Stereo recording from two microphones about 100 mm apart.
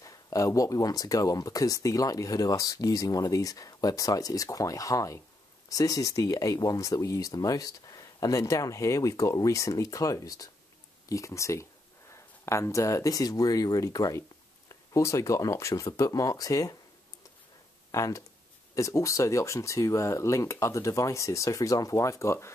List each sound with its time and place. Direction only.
0.0 s speech: 35° left (ahead or behind)
17.9 s speech: 35° left (ahead or behind)